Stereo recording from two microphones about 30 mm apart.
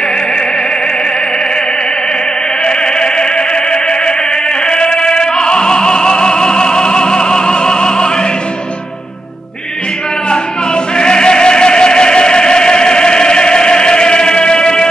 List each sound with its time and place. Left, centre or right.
2.6 s music: left
4.6 s opera: left
11.0 s a sound: left